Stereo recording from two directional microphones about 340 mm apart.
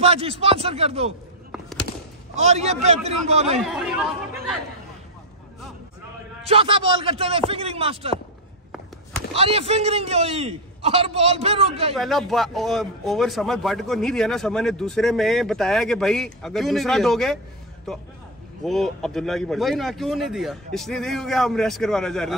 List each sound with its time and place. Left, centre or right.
0.0 s a man's voice: centre
1.5 s fireworks: centre
2.3 s a man's voice: centre
3.6 s a man's voice: centre
6.4 s a man's voice: centre
9.3 s a man's voice: centre
11.9 s a man's voice: centre
18.6 s a man's voice: centre